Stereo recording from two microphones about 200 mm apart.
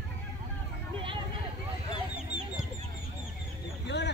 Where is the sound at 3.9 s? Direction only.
60° left (ahead or behind).